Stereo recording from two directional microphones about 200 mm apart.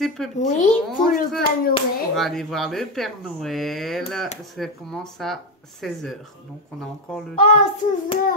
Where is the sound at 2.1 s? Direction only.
Centre (ahead or behind).